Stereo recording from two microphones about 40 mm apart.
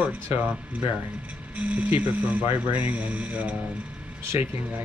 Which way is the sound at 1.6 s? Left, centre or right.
Right.